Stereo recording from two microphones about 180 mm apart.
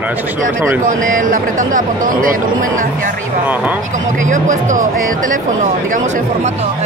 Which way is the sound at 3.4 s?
10° right (ahead or behind).